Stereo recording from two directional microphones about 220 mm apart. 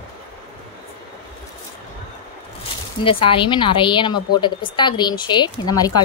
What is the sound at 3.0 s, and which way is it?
A woman's voice, 25° left (ahead or behind).